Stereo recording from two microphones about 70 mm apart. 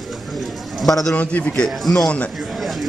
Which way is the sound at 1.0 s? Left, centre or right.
Centre.